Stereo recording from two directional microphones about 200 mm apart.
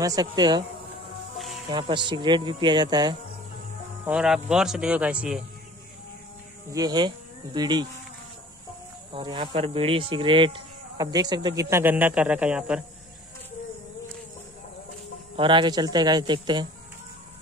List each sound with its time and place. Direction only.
0.0 s speech: 20° right (ahead or behind)
1.7 s speech: 25° right (ahead or behind)
4.0 s speech: 5° right (ahead or behind)
6.7 s speech: 20° right (ahead or behind)
9.1 s speech: 25° right (ahead or behind); by 12.8 s 5° right (ahead or behind)
15.3 s speech: 25° right (ahead or behind)